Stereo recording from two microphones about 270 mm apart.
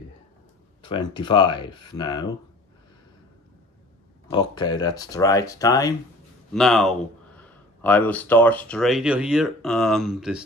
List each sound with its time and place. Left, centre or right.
0.8 s speech: centre
4.3 s speech: centre
6.5 s speech: centre